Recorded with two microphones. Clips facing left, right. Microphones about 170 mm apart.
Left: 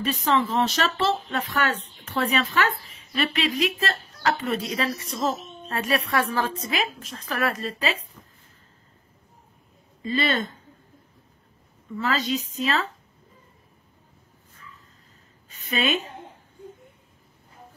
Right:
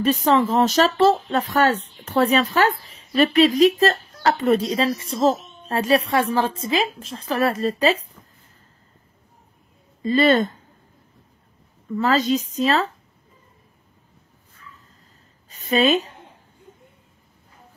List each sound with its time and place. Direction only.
0.0 s a woman's voice: 40° right (ahead or behind)
10.0 s speech: 45° right (ahead or behind)
12.0 s speech: 40° right (ahead or behind)
15.5 s a woman's voice: 35° right (ahead or behind)